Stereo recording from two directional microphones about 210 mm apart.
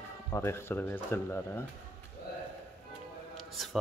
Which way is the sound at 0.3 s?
10° left (ahead or behind).